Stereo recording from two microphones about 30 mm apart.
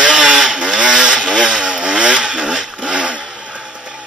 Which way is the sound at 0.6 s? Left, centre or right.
Right.